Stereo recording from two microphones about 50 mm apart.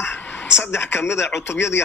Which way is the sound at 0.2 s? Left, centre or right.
Left.